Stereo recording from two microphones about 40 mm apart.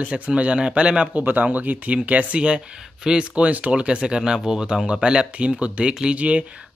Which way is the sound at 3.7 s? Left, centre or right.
Right.